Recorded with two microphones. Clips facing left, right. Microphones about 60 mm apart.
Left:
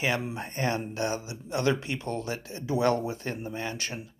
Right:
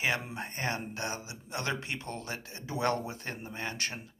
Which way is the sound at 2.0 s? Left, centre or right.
Left.